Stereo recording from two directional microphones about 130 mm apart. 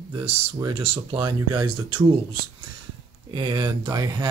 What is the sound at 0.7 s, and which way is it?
Speech, 45° right (ahead or behind).